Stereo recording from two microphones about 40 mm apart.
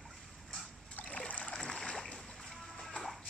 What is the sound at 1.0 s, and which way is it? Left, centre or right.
Trickle, left.